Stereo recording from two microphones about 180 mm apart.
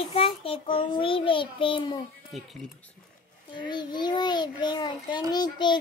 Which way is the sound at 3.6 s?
25° left (ahead or behind).